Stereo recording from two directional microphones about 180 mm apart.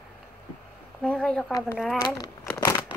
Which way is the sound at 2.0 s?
20° left (ahead or behind).